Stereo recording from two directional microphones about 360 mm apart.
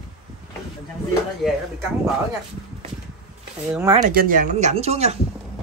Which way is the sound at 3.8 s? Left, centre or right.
Centre.